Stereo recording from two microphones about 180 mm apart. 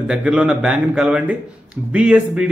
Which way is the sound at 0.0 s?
5° right (ahead or behind).